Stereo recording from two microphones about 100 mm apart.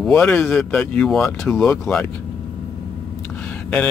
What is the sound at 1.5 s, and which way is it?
Speech, 20° left (ahead or behind).